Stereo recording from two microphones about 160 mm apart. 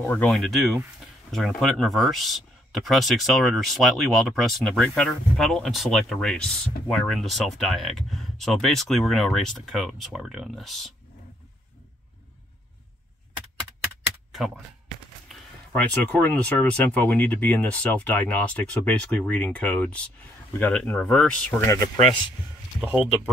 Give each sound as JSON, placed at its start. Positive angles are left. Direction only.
{"t": 0.0, "sound": "speech", "side_deg": 10}
{"t": 0.3, "sound": "speech", "side_deg": 0}
{"t": 15.7, "sound": "speech", "side_deg": 10}
{"t": 21.6, "sound": "speech", "side_deg": 25}
{"t": 22.8, "sound": "speech", "side_deg": -5}